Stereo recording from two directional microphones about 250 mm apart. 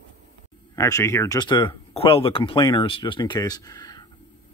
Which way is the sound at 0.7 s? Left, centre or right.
Centre.